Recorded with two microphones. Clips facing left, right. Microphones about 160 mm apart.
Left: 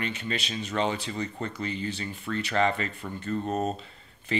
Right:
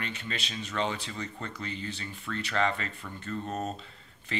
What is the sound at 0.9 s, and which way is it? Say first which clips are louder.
Speech: left 5 dB; 25° left (ahead or behind).